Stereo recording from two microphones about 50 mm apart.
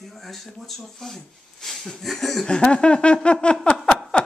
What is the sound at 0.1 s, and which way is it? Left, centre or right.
Speech, centre.